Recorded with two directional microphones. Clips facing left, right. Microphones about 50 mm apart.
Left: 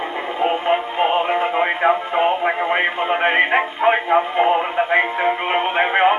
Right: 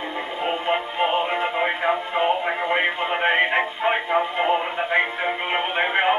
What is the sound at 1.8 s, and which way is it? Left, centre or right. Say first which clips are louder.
Speech: left 5 dB; left.